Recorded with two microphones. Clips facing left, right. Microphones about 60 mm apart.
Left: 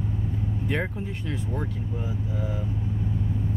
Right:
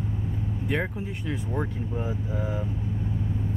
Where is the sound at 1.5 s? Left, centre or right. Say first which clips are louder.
Right 2 dB; right.